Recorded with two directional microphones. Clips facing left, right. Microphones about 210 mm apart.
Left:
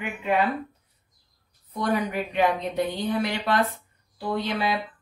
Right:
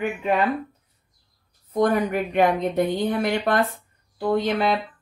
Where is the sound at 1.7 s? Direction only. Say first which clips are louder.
Right 5 dB; 45° right (ahead or behind).